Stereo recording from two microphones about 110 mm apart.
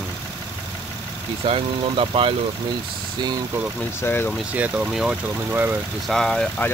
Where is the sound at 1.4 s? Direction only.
55° right (ahead or behind).